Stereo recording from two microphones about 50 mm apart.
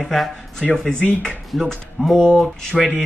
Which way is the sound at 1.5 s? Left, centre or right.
Centre.